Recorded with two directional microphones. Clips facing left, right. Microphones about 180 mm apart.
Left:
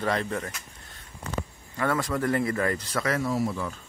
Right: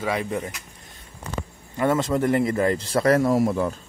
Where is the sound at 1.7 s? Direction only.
20° right (ahead or behind); by 3.8 s 45° right (ahead or behind).